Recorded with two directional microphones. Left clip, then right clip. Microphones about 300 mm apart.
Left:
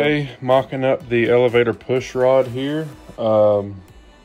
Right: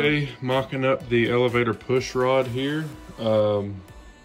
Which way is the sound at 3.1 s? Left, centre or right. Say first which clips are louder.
Left 7 dB; left.